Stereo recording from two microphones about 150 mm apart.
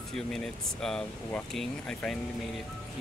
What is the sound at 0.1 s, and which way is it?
Speech, 5° left (ahead or behind).